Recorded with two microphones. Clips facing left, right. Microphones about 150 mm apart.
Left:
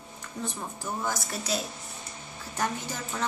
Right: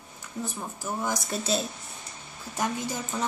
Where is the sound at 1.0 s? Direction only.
25° right (ahead or behind).